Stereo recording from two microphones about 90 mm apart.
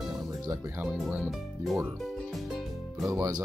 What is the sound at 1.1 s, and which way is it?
Speech, centre (ahead or behind).